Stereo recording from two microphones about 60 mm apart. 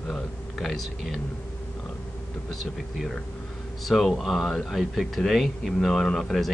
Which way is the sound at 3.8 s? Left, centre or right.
Centre.